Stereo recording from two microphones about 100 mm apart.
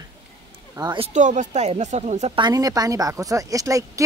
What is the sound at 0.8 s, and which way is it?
Speech, 45° right (ahead or behind).